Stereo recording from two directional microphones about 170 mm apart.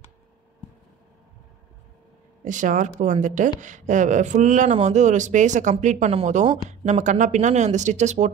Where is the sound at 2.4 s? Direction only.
50° right (ahead or behind).